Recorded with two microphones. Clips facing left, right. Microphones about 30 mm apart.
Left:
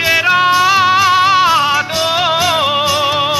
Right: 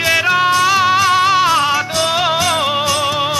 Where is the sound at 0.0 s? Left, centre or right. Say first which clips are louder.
Left 2 dB; centre.